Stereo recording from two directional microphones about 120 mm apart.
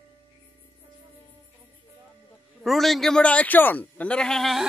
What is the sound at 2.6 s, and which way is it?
Speech, centre (ahead or behind).